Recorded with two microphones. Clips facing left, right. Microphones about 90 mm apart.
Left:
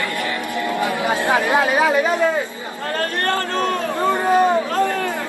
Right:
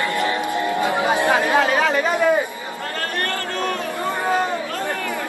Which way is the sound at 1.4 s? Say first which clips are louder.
Left 1 dB; 15° left (ahead or behind).